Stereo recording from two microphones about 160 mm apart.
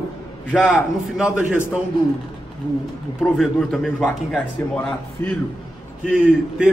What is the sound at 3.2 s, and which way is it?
A man's voice, centre (ahead or behind).